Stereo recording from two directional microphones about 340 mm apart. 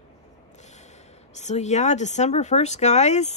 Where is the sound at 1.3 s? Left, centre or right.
Centre.